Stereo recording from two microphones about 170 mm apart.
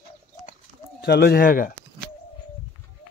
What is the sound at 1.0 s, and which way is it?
Speech, 65° left (ahead or behind).